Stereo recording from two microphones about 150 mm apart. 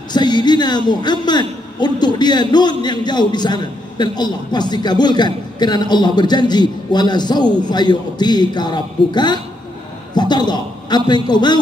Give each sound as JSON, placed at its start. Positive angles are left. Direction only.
{"t": 0.1, "sound": "a man's voice", "side_deg": 30}